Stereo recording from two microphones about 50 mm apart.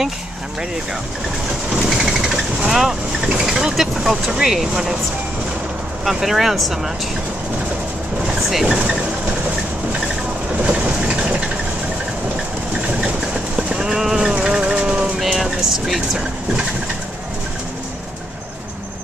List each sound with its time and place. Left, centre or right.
1.8 s speech: centre
6.0 s speech: centre
8.6 s speech: centre
10.6 s a sound: centre
13.6 s clip-clop: centre
14.4 s insect: centre
15.1 s vehicle: centre